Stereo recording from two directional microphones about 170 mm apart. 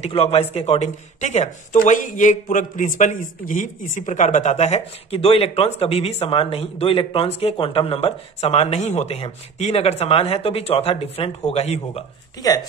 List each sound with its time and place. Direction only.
0.0 s speech: 35° left (ahead or behind)
12.4 s speech: 20° left (ahead or behind)